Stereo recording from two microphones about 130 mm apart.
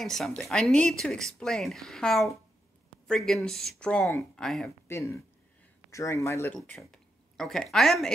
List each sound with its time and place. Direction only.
0.0 s speech: centre (ahead or behind)
4.8 s speech: 20° left (ahead or behind)
6.5 s speech: 5° left (ahead or behind)